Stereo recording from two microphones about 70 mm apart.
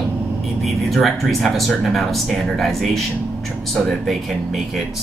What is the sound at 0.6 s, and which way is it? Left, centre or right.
Speech, centre.